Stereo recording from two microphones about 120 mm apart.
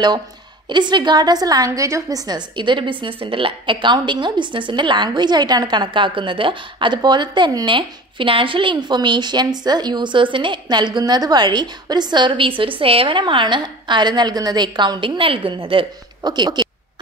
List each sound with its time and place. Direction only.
0.7 s a woman's voice: 40° right (ahead or behind)
16.2 s a woman's voice: 35° right (ahead or behind)